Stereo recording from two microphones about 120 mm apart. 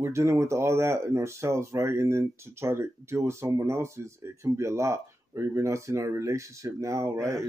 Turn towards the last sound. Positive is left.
turn(degrees=-25)  # may be behind; listen again after turning